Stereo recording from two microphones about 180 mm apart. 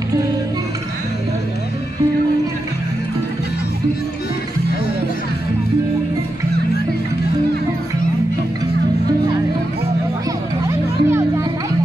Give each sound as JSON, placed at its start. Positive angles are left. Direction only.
{"t": 10.7, "sound": "music", "side_deg": -15}